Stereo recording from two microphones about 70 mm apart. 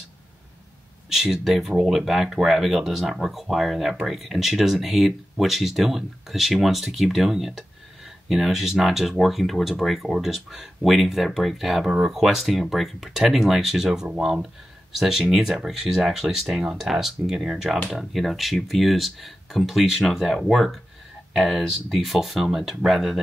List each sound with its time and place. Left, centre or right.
1.1 s speech: centre